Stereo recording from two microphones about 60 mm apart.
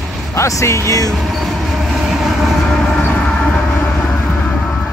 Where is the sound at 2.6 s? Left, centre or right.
Centre.